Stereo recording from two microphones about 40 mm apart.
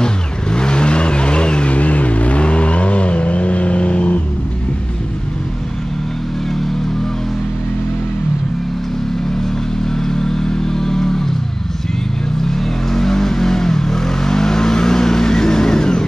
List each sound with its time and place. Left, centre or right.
0.0 s vehicle: centre
9.8 s vehicle: centre
12.4 s vehicle: centre